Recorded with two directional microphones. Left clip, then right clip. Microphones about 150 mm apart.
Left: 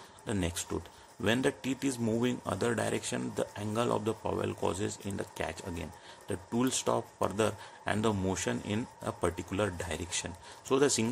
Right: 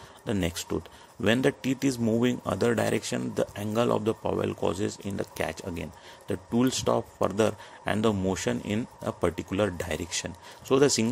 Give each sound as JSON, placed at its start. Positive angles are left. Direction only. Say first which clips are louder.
{"t": 0.3, "sound": "speech", "louder": "right 5 dB", "side_deg": -30}